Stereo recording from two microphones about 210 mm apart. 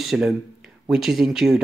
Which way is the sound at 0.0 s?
Centre (ahead or behind).